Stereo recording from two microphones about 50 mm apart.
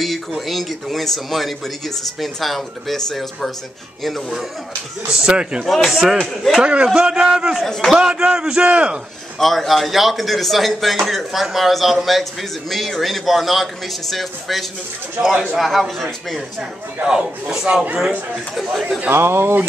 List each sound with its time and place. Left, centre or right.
0.0 s speech: centre
5.1 s speech: centre
5.7 s speech: centre
6.6 s a man's voice: right
6.9 s speech: centre
7.5 s speech: centre
8.1 s a man's voice: centre
9.4 s speech: centre
19.0 s speech: right